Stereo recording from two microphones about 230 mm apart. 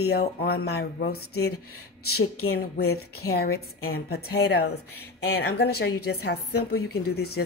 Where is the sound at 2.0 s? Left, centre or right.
Left.